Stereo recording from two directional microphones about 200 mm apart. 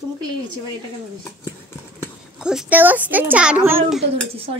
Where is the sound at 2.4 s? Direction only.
5° right (ahead or behind).